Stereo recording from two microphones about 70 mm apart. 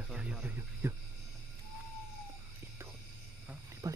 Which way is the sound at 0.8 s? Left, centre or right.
Right.